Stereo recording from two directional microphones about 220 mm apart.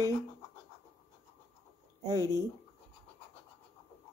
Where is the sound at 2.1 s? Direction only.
15° right (ahead or behind).